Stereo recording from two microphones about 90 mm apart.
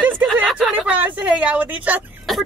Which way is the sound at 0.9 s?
15° right (ahead or behind).